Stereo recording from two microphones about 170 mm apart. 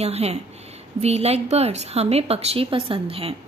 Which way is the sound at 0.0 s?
40° right (ahead or behind).